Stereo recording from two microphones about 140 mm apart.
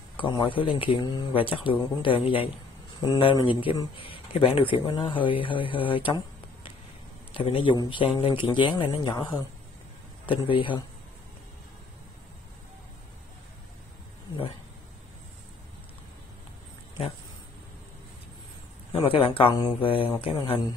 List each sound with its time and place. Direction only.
0.2 s speech: 35° left (ahead or behind)
18.9 s speech: 40° left (ahead or behind)